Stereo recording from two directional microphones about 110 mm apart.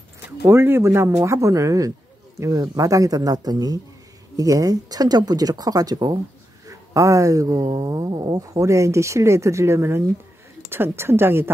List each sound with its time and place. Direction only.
0.5 s speech: 20° right (ahead or behind)